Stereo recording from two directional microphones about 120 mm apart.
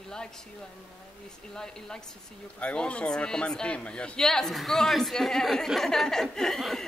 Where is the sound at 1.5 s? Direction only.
5° left (ahead or behind).